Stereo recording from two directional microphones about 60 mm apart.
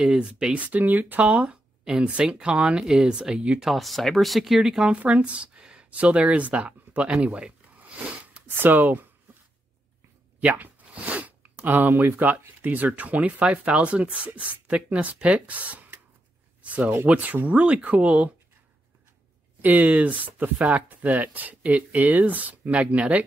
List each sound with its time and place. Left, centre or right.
0.0 s speech: centre
3.7 s speech: centre
4.9 s speech: right
7.3 s a sound: right
8.5 s speech: right
10.4 s speech: right
19.6 s speech: right